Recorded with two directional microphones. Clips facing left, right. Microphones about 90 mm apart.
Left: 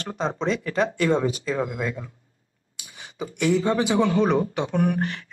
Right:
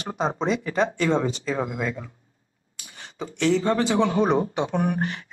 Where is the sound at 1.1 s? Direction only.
5° left (ahead or behind).